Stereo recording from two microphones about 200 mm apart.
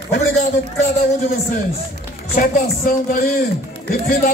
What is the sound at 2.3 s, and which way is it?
Speech, 45° left (ahead or behind).